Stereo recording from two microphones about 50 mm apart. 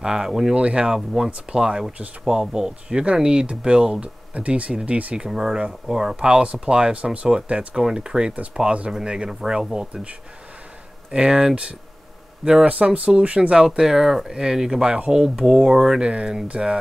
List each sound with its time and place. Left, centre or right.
0.0 s speech: centre
0.6 s speech: right
5.1 s speech: centre
11.1 s speech: centre
16.0 s speech: centre